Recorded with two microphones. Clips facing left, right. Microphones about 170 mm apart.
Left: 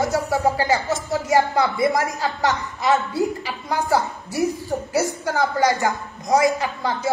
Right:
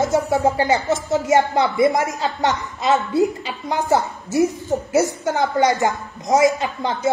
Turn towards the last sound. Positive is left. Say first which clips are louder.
# right 2 dB
turn(degrees=-20)  # may be behind; listen again after turning